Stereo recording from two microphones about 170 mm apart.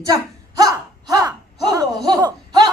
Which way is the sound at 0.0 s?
20° right (ahead or behind).